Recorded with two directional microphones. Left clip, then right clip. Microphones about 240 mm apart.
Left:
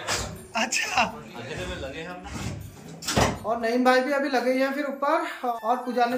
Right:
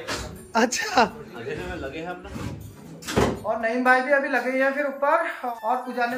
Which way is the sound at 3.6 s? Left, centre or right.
Centre.